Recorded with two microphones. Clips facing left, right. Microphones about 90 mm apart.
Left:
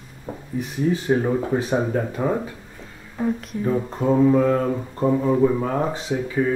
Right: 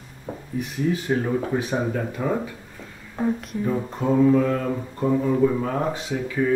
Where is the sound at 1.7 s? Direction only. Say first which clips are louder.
Left 3 dB; 25° left (ahead or behind).